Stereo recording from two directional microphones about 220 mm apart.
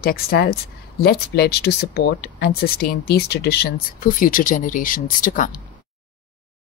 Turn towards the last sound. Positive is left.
turn(degrees=40)  # may be behind; listen again after turning